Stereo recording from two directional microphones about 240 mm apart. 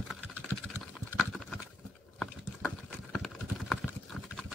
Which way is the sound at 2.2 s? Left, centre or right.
Centre.